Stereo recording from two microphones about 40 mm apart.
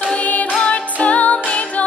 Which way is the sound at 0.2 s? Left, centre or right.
Left.